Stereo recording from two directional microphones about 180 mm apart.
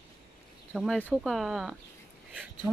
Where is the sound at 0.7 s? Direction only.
Centre (ahead or behind).